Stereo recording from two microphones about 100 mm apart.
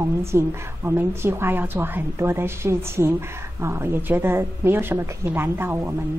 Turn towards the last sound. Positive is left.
turn(degrees=-25)  # may be behind; listen again after turning